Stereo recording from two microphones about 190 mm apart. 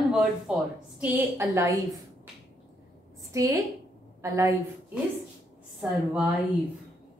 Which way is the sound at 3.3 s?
20° right (ahead or behind).